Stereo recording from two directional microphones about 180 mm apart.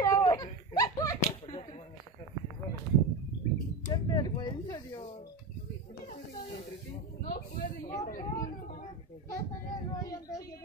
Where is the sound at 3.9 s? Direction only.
20° left (ahead or behind).